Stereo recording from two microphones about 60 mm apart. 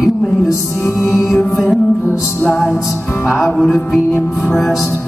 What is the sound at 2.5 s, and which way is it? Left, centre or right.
Music, centre.